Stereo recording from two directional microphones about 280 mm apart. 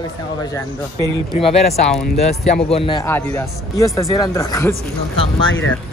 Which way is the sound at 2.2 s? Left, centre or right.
Left.